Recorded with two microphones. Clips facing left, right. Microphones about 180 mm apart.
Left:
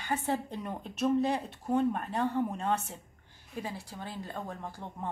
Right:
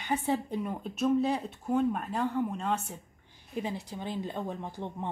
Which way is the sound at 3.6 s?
20° right (ahead or behind).